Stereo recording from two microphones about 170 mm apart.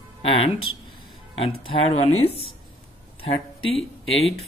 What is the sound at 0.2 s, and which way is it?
Speech, 30° left (ahead or behind).